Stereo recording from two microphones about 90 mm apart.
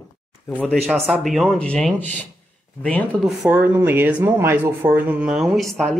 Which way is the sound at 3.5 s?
20° right (ahead or behind).